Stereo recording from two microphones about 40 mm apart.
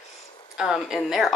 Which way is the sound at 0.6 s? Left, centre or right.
Centre.